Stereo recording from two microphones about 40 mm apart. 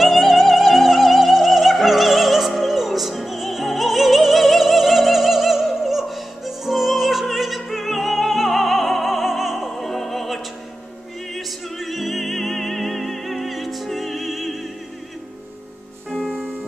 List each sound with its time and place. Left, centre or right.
0.0 s music: centre
9.7 s music: centre
16.1 s music: centre